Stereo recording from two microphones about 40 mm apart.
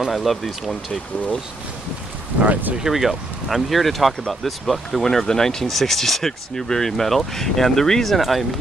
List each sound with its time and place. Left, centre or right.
0.0 s speech: centre
2.4 s speech: right
2.8 s speech: centre